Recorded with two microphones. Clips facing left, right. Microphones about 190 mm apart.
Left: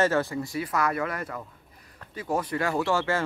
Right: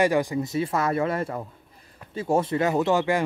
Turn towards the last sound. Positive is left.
turn(degrees=-15)  # may be behind; listen again after turning